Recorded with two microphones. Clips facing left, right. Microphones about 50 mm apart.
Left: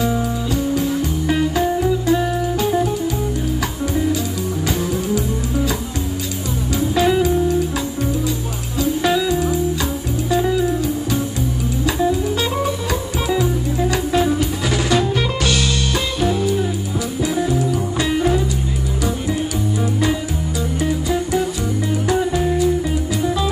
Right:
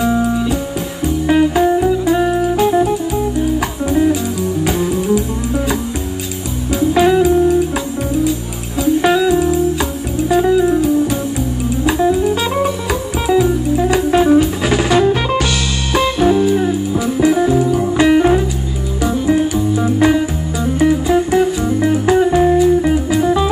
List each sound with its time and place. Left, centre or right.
1.2 s music: right
4.6 s music: right
6.8 s music: right
7.1 s music: centre
9.0 s music: centre
11.8 s music: right
13.3 s music: centre
19.8 s music: right